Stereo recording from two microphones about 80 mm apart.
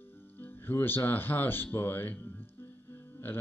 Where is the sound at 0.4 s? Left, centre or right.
Left.